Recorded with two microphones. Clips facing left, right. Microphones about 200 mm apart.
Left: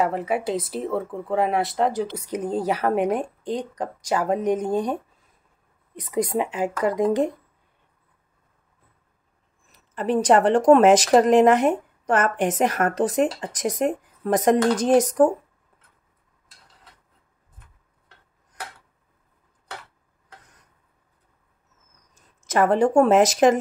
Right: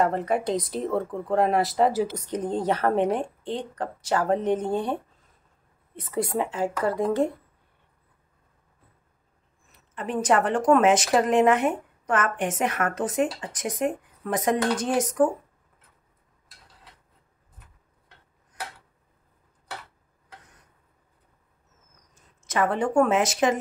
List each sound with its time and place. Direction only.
0.0 s speech: 5° left (ahead or behind)
2.1 s a woman's voice: 10° left (ahead or behind)
5.9 s a woman's voice: 15° left (ahead or behind)
9.7 s speech: 35° left (ahead or behind)
22.1 s speech: 45° left (ahead or behind)